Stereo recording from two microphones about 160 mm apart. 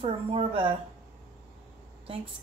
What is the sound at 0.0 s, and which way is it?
Speech, 35° right (ahead or behind).